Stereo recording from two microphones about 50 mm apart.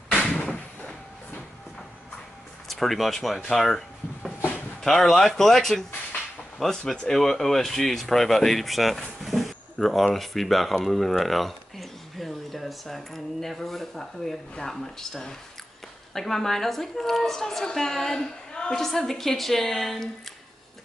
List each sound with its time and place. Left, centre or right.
0.1 s a sound: left
2.7 s a woman's voice: centre
18.9 s a woman's voice: centre